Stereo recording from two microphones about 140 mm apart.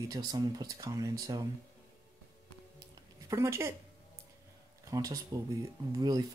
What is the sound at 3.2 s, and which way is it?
Speech, 20° right (ahead or behind).